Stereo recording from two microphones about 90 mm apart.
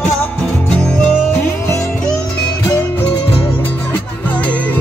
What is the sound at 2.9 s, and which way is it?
Music, 20° left (ahead or behind).